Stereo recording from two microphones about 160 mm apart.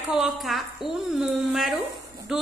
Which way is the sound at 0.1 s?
Centre (ahead or behind).